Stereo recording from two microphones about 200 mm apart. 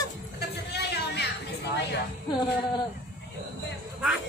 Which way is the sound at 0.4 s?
55° left (ahead or behind).